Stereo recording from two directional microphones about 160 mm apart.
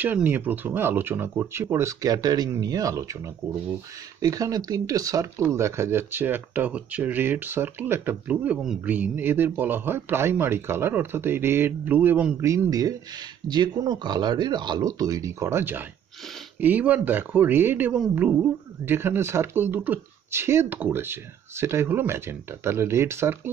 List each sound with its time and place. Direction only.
0.0 s speech: 10° right (ahead or behind)
4.2 s speech: 20° right (ahead or behind)